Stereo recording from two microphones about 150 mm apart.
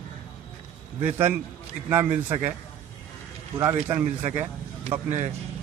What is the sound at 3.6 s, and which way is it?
A man's voice, 20° right (ahead or behind).